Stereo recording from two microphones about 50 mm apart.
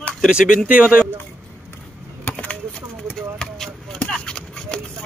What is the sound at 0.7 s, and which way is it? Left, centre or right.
Speech, right.